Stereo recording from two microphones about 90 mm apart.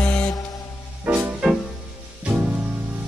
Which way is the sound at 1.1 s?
10° right (ahead or behind).